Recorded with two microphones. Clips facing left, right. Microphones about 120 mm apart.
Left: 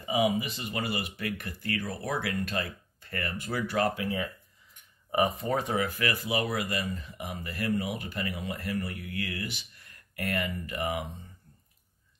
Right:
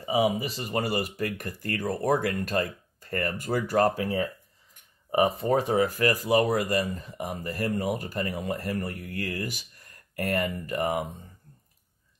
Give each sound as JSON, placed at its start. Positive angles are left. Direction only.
{"t": 0.0, "sound": "speech", "side_deg": -35}